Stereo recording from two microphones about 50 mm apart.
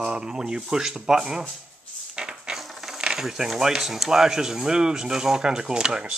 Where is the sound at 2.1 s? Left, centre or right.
Centre.